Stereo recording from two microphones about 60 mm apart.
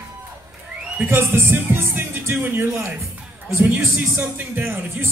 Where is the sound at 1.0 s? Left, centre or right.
Right.